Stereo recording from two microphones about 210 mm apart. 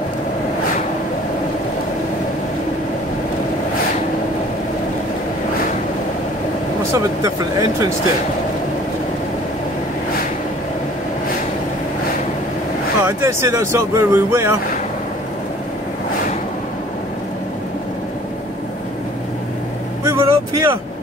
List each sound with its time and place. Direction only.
6.9 s speech: 15° right (ahead or behind)
13.0 s speech: 10° right (ahead or behind)
20.1 s vehicle: 15° right (ahead or behind)